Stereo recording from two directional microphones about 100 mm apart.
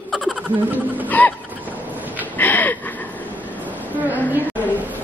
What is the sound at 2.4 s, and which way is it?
Gasp, 20° left (ahead or behind).